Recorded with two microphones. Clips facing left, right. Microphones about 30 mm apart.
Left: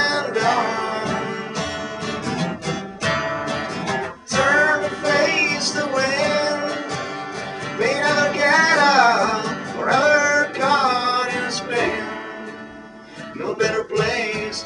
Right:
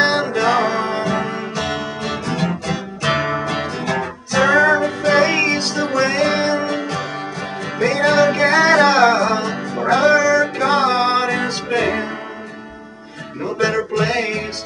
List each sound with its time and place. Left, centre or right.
0.0 s music: centre
7.8 s music: centre
13.6 s music: centre